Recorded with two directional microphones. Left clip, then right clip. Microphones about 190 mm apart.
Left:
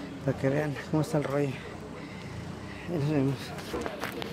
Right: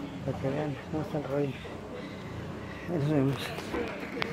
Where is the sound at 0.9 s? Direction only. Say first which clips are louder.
Left 6 dB; 55° left (ahead or behind).